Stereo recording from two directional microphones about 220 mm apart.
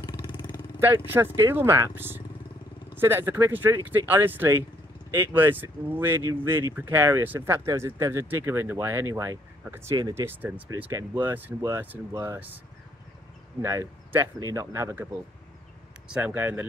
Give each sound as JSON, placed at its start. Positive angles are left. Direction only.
{"t": 0.0, "sound": "vehicle", "side_deg": 20}
{"t": 0.7, "sound": "speech", "side_deg": -10}
{"t": 13.6, "sound": "speech", "side_deg": -10}
{"t": 16.1, "sound": "speech", "side_deg": -5}